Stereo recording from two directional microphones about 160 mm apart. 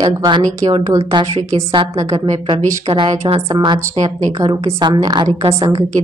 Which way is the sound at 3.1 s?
45° right (ahead or behind).